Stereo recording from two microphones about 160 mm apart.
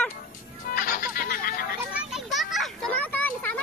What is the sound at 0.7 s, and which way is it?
Music, 55° left (ahead or behind).